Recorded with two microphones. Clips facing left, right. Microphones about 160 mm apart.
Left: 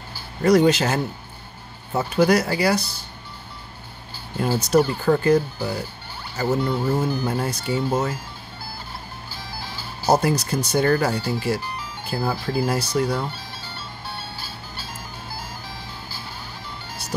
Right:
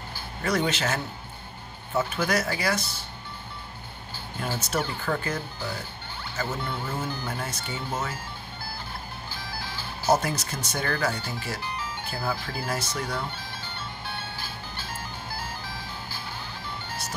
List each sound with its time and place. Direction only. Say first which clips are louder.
0.4 s speech: left 10 dB; 35° left (ahead or behind)
4.4 s speech: left 11 dB; 35° left (ahead or behind)
10.0 s speech: left 5 dB; 35° left (ahead or behind)